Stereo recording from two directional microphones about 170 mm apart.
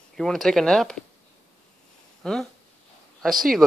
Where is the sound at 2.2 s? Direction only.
5° left (ahead or behind).